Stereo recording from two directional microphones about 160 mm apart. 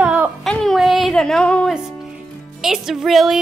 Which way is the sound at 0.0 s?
5° right (ahead or behind).